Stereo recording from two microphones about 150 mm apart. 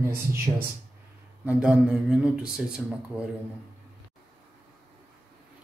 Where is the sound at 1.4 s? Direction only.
5° right (ahead or behind).